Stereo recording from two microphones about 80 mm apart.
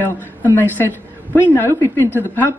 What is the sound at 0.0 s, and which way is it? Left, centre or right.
A man's voice, left.